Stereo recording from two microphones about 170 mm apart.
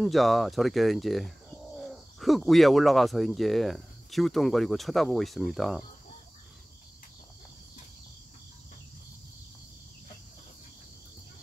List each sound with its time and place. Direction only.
0.0 s speech: centre (ahead or behind)